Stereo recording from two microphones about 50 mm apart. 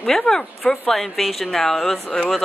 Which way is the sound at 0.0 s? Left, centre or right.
Centre.